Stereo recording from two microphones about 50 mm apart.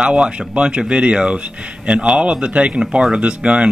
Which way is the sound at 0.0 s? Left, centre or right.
Right.